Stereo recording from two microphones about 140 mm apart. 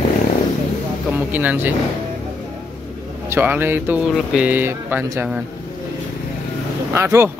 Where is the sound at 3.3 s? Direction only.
15° right (ahead or behind).